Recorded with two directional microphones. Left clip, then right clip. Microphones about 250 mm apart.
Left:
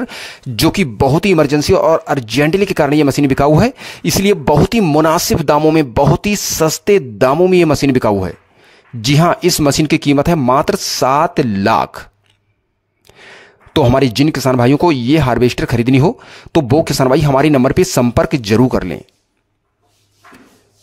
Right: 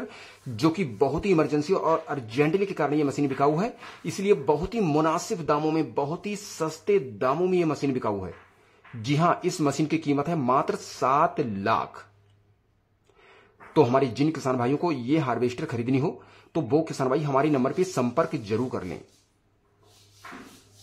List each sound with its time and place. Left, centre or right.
0.0 s speech: left
13.3 s speech: left